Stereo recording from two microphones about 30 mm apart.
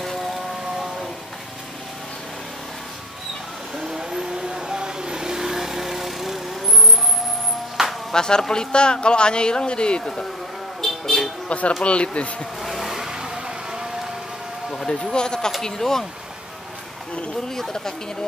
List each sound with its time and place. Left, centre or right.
3.7 s vehicle: centre
8.1 s speech: left
10.8 s music: centre
11.4 s speech: left
12.6 s vehicle: centre; by 13.8 s right
14.9 s speech: left
15.6 s speech: centre
17.5 s speech: centre